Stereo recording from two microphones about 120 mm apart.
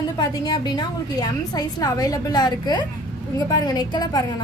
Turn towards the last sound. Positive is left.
turn(degrees=35)  # may be behind; listen again after turning